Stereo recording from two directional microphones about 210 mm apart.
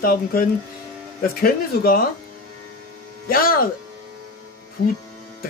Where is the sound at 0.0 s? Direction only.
45° left (ahead or behind).